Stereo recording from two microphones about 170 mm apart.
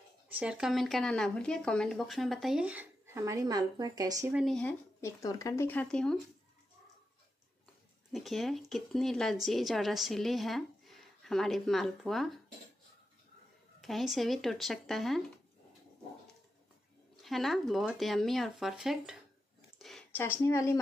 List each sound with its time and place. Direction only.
0.4 s a woman's voice: 5° right (ahead or behind); by 4.3 s 20° right (ahead or behind)
4.3 s a woman's voice: 5° right (ahead or behind)
4.6 s speech: 15° left (ahead or behind)
8.1 s a woman's voice: centre (ahead or behind)
13.7 s a woman's voice: centre (ahead or behind)
17.2 s a woman's voice: centre (ahead or behind)
19.8 s a sound: centre (ahead or behind)
20.2 s speech: 15° left (ahead or behind)